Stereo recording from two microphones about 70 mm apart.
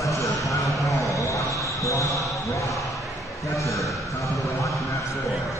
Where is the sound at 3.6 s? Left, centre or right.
Left.